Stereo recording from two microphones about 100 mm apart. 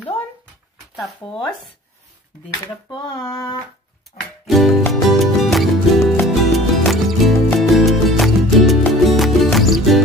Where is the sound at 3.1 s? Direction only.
35° left (ahead or behind).